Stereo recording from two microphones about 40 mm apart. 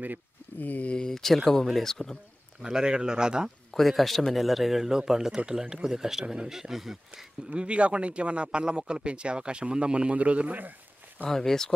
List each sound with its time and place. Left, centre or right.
0.6 s speech: left
0.9 s speech: centre
2.6 s a man's voice: centre
3.7 s speech: centre; by 6.5 s right
6.5 s speech: centre
7.5 s a man's voice: right
11.2 s speech: centre